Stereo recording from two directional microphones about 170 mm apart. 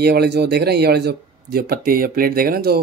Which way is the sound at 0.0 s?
75° right (ahead or behind).